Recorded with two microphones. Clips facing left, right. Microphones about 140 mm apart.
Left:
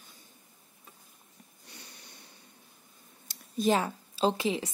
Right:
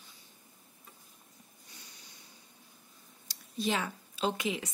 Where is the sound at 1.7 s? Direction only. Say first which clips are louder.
Left 6 dB; 65° left (ahead or behind).